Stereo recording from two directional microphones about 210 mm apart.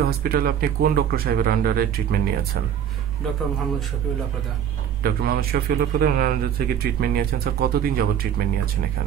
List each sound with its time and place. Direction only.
0.0 s a man's voice: 45° right (ahead or behind)
5.0 s a man's voice: 45° right (ahead or behind)